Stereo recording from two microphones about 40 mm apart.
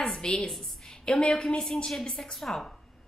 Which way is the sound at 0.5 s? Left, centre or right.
Centre.